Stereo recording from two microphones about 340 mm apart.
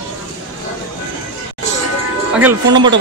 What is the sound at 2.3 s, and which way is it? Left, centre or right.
Speech, centre.